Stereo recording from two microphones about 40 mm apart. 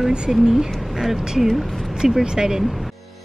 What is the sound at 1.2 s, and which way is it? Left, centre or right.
Speech, centre.